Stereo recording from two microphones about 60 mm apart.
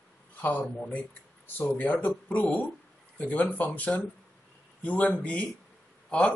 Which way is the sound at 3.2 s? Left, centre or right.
Left.